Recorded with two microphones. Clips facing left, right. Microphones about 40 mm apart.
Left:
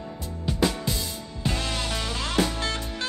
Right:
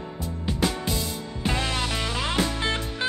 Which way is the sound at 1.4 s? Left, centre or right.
Right.